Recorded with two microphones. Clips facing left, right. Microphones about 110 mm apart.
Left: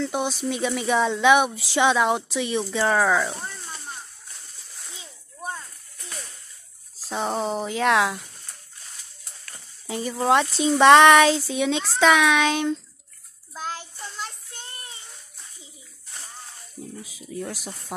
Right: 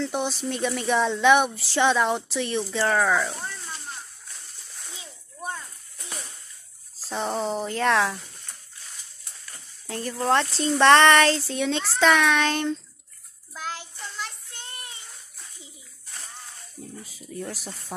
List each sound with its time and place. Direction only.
0.0 s speech: 5° left (ahead or behind)
7.1 s speech: 5° left (ahead or behind)
9.8 s speech: 10° left (ahead or behind)
14.1 s child singing: 30° left (ahead or behind)
17.3 s speech: centre (ahead or behind)